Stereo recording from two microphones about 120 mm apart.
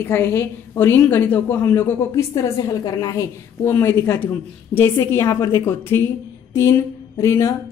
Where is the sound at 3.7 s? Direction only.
20° left (ahead or behind).